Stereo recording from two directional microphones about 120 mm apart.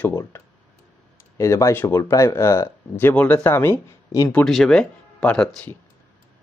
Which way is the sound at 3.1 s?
10° left (ahead or behind).